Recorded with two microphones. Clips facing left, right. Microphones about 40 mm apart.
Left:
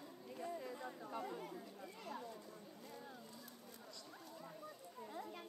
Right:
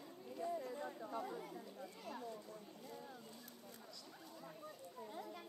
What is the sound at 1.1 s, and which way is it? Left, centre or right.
Speech, left.